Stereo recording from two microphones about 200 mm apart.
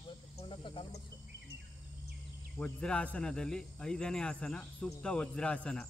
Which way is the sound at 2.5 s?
5° left (ahead or behind).